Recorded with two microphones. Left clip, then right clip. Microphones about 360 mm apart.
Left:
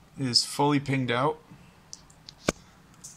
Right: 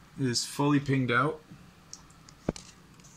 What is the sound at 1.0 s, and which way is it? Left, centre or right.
Speech, left.